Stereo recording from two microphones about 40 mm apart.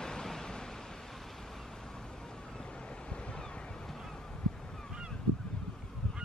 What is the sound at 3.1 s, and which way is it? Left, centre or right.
Waves, left.